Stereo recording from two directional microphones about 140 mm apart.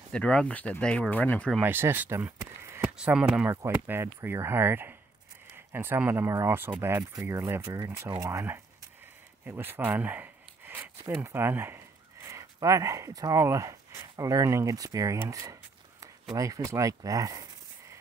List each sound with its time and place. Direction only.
0.1 s speech: 5° left (ahead or behind)
1.6 s speech: 15° right (ahead or behind)
3.0 s speech: 5° right (ahead or behind); by 17.5 s 25° right (ahead or behind)